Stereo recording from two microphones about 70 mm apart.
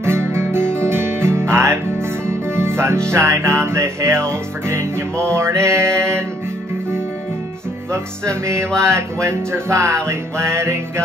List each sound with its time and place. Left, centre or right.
0.0 s guitar: right
0.7 s music: right
7.9 s music: right